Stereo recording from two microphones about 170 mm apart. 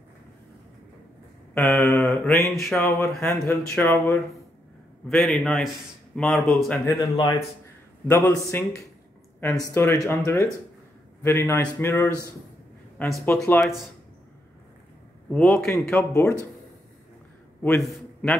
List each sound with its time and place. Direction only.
1.5 s speech: 15° left (ahead or behind)
2.5 s a man's voice: centre (ahead or behind)
7.0 s a man's voice: 25° left (ahead or behind); by 13.7 s centre (ahead or behind)
15.3 s a man's voice: 5° left (ahead or behind)
17.6 s a man's voice: 10° left (ahead or behind)